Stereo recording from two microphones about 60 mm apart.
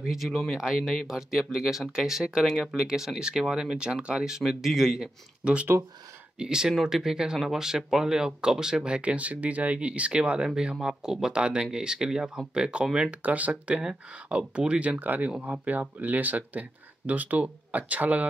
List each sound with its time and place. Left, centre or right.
0.0 s speech: centre
13.1 s speech: right